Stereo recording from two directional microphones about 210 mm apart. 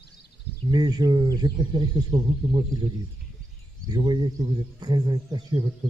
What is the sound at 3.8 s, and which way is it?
Speech, 20° right (ahead or behind).